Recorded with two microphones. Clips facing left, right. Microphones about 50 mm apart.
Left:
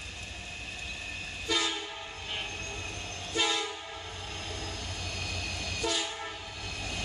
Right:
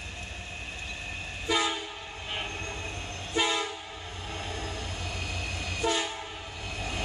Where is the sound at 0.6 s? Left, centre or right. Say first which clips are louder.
Right 1 dB; centre.